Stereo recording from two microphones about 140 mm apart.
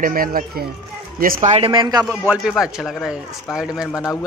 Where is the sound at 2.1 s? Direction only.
5° right (ahead or behind).